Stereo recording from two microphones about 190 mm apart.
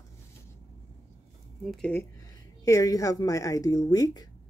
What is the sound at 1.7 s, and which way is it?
Speech, 5° left (ahead or behind).